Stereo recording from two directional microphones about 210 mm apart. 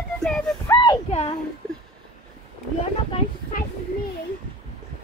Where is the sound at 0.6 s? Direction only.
20° left (ahead or behind).